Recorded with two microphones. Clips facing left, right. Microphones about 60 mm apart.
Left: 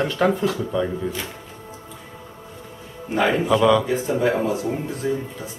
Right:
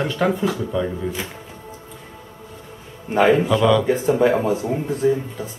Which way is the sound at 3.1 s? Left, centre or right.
Right.